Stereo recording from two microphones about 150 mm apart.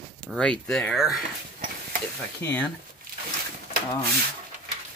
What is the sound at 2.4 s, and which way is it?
Speech, 15° left (ahead or behind).